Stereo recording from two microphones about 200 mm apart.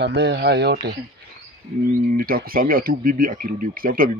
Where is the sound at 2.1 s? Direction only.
50° right (ahead or behind).